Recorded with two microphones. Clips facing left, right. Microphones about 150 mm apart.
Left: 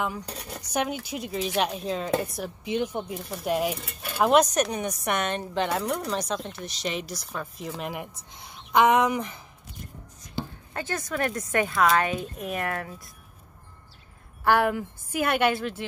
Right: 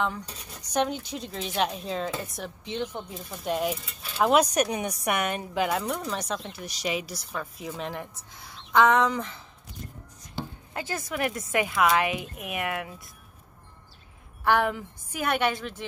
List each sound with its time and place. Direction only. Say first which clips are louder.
0.4 s speech: left 7 dB; 65° left (ahead or behind)
0.7 s speech: right 1 dB; 10° left (ahead or behind)
3.7 s speech: left 3 dB; 60° left (ahead or behind)
4.2 s a woman's voice: left 1 dB; 5° right (ahead or behind)
7.9 s speech: left 1 dB; 15° left (ahead or behind)
10.7 s a woman's voice: left 1 dB; 15° right (ahead or behind)
14.4 s speech: left 2 dB; 10° left (ahead or behind)